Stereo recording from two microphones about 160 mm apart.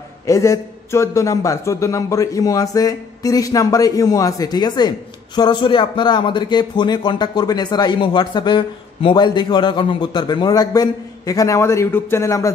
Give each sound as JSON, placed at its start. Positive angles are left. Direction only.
{"t": 0.3, "sound": "a man's voice", "side_deg": 20}